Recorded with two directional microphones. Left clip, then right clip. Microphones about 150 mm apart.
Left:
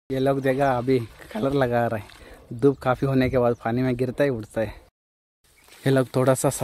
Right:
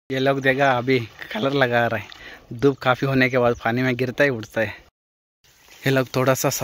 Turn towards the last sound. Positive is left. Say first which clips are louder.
# right 1 dB
turn(degrees=20)  # may be behind; listen again after turning